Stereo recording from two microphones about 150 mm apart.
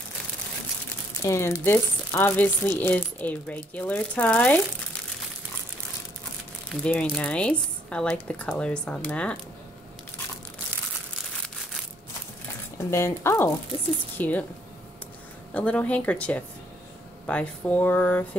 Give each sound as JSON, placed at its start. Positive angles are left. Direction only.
{"t": 1.2, "sound": "speech", "side_deg": 20}
{"t": 6.7, "sound": "speech", "side_deg": 5}
{"t": 12.7, "sound": "speech", "side_deg": 20}
{"t": 15.5, "sound": "speech", "side_deg": 10}